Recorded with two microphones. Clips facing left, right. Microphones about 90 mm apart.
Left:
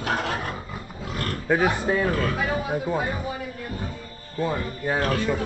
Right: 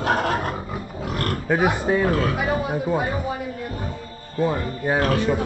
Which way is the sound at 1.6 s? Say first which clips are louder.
Right 5 dB; 15° right (ahead or behind).